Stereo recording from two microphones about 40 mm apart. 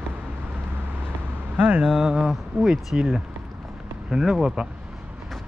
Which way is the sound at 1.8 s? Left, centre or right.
Centre.